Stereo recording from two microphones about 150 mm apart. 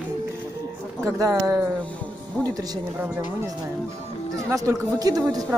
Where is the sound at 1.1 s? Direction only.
20° right (ahead or behind).